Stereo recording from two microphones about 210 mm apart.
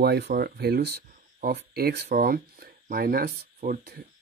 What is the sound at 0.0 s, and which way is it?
Speech, 50° right (ahead or behind).